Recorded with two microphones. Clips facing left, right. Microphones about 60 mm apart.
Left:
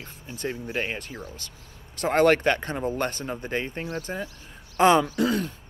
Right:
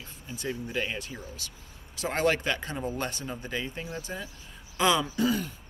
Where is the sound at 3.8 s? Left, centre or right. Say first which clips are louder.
Left 5 dB; left.